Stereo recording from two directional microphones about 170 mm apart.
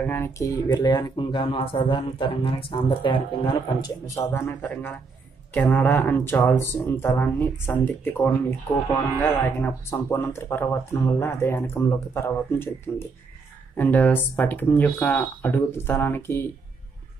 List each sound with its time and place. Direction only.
0.0 s speech: 10° left (ahead or behind)
4.3 s speech: 15° left (ahead or behind)